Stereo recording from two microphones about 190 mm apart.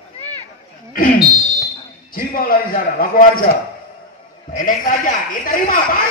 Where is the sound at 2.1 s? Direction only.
50° left (ahead or behind).